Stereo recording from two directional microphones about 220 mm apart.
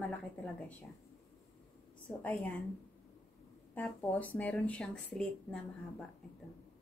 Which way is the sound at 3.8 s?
5° left (ahead or behind).